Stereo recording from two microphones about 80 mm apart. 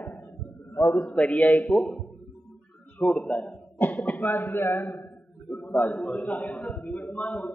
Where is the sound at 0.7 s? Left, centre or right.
Left.